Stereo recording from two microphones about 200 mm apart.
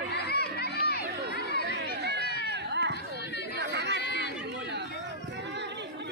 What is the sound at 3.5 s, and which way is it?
Chatter, 60° right (ahead or behind).